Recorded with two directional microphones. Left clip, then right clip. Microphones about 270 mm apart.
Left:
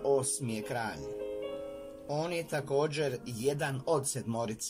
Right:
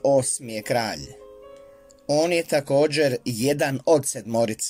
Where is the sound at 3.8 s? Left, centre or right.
Right.